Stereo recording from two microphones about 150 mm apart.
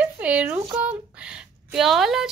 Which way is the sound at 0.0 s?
10° right (ahead or behind).